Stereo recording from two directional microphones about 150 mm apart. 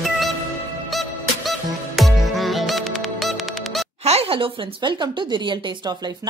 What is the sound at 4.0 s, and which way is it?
Speech, 45° right (ahead or behind).